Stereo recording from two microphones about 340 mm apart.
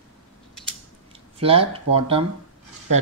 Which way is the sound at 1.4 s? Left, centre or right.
Centre.